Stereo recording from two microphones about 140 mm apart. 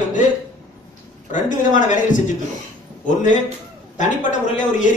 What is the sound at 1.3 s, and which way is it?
A man's voice, 65° left (ahead or behind).